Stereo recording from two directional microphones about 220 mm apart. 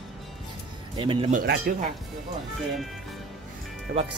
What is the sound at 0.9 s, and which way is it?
Speech, 25° right (ahead or behind).